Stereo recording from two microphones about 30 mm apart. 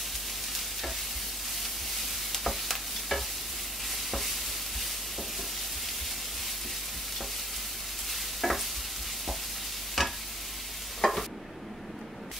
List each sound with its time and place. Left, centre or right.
2.3 s stir: centre
8.1 s stir: centre
10.0 s stir: centre
11.0 s stir: left